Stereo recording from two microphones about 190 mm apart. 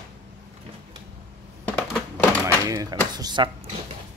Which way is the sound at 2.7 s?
20° right (ahead or behind).